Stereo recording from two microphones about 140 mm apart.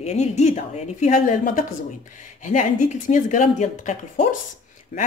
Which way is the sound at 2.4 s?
60° left (ahead or behind).